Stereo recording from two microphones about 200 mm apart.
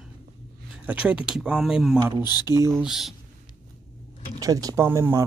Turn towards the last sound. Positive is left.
turn(degrees=-15)  # may be behind; listen again after turning